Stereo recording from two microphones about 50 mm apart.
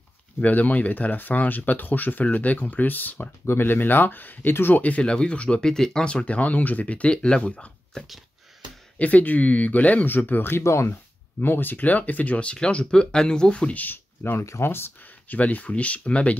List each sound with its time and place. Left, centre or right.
0.4 s speech: left
5.0 s speech: centre
7.9 s a sound: centre
8.9 s speech: left
10.6 s speech: left
11.4 s speech: left
13.8 s speech: left
14.6 s speech: left
15.2 s speech: left